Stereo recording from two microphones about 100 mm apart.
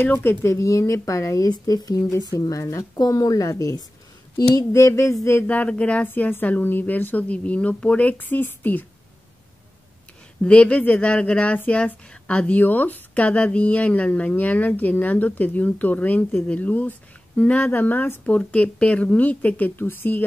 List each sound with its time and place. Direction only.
0.0 s speech: 20° left (ahead or behind)
5.5 s speech: 10° left (ahead or behind)
10.4 s speech: 15° left (ahead or behind)